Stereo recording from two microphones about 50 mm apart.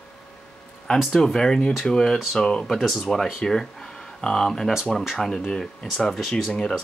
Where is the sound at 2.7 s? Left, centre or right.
Centre.